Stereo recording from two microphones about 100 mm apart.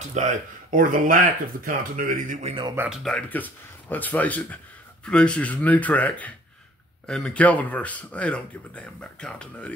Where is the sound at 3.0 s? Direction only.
10° left (ahead or behind).